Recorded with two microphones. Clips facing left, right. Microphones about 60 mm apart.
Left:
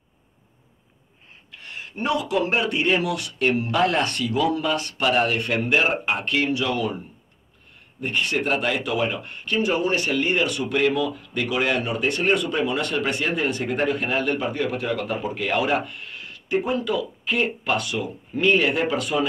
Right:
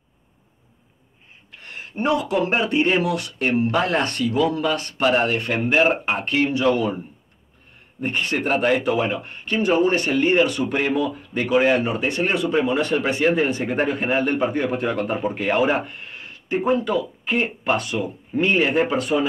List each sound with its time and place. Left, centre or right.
1.5 s speech: right
8.0 s speech: right